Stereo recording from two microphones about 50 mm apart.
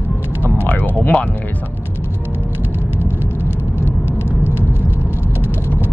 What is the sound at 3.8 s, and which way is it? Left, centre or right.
Vehicle, right.